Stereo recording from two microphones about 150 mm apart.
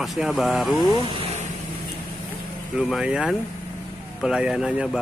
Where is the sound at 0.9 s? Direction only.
35° left (ahead or behind).